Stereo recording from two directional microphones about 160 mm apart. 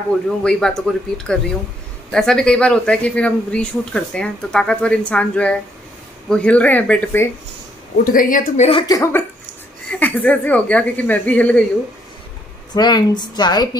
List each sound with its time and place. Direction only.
0.4 s speech: 5° left (ahead or behind)
8.0 s a woman's voice: 60° left (ahead or behind)
8.8 s a woman's voice: 20° left (ahead or behind)
9.8 s speech: 10° left (ahead or behind)
12.7 s a woman's voice: 25° left (ahead or behind)